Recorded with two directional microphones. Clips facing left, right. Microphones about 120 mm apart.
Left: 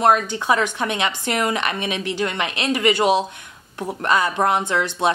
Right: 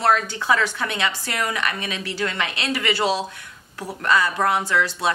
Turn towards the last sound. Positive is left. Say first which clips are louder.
# left 2 dB
turn(degrees=20)  # may be behind; listen again after turning